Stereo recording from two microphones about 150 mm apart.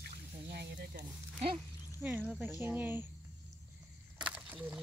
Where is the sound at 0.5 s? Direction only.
85° right.